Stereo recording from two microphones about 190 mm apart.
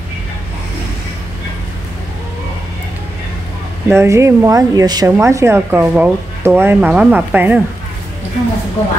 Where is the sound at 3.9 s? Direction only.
15° right (ahead or behind).